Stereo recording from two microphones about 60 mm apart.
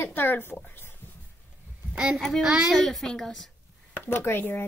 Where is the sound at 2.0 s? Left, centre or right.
Centre.